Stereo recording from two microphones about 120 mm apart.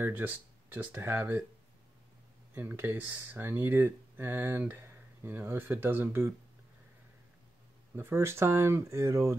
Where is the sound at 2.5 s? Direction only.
15° right (ahead or behind).